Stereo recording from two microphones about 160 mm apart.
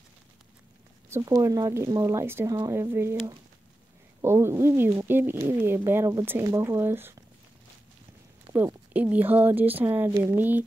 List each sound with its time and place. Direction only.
1.1 s speech: 20° right (ahead or behind)
8.5 s speech: 10° right (ahead or behind)